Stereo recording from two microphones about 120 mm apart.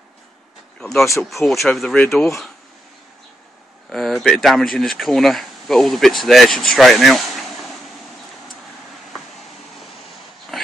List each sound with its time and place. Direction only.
0.7 s speech: centre (ahead or behind)
3.9 s speech: centre (ahead or behind)
10.5 s pig: centre (ahead or behind)